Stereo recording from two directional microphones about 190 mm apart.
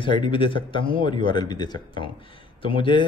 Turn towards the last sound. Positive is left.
turn(degrees=25)  # may be behind; listen again after turning